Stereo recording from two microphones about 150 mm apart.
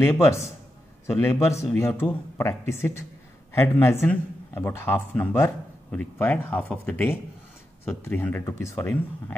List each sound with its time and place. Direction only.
0.0 s a man's voice: 20° left (ahead or behind)